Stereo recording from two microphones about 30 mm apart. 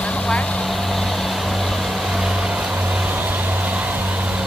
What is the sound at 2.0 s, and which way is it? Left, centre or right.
Vehicle, centre.